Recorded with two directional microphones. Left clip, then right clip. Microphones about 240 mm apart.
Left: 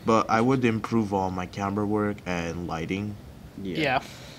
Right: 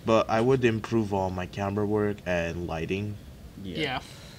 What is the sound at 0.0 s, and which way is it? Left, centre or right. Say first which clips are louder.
Speech: left 1 dB; right.